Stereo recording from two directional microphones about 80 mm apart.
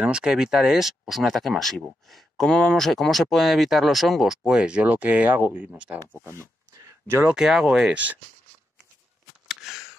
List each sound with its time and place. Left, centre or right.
0.0 s speech: centre
7.2 s speech: centre
7.9 s speech: centre
9.5 s a sound: centre